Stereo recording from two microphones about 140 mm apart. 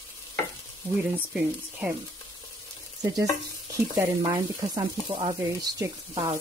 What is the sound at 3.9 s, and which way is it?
Speech, 25° right (ahead or behind).